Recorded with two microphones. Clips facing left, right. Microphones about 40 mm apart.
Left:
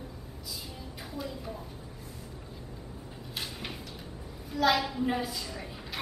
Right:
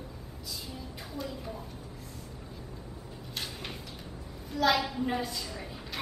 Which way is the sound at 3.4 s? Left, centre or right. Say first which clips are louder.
Left 1 dB; centre.